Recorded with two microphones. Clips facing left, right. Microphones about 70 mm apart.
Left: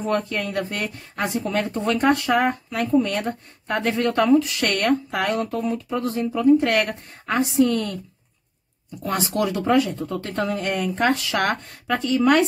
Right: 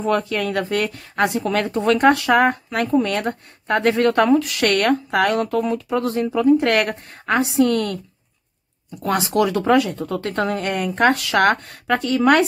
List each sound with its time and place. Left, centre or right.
0.2 s speech: right
9.0 s speech: right